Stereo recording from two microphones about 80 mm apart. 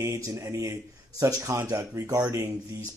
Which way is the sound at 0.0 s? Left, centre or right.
Right.